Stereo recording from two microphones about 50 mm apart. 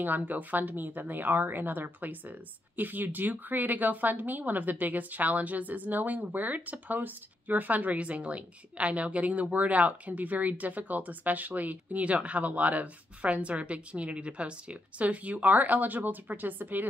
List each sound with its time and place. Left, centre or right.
0.0 s speech: right